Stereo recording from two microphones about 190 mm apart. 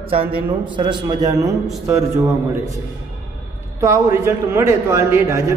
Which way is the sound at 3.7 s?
15° right (ahead or behind).